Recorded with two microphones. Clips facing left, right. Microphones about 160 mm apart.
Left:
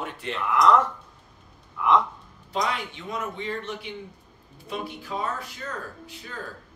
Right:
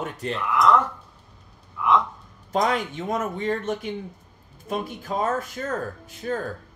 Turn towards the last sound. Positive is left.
turn(degrees=-45)  # may be behind; listen again after turning